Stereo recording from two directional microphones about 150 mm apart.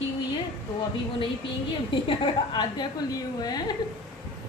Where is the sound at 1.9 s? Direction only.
30° left (ahead or behind).